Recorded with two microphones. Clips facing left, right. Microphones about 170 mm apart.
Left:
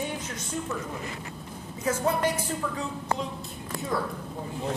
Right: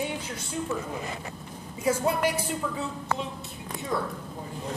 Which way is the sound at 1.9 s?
10° right (ahead or behind).